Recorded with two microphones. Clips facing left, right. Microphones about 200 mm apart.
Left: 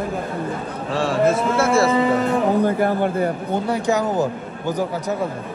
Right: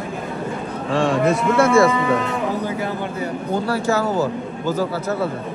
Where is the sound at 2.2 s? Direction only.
55° left (ahead or behind).